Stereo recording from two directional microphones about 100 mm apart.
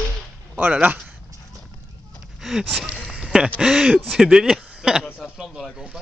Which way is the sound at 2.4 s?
Centre (ahead or behind).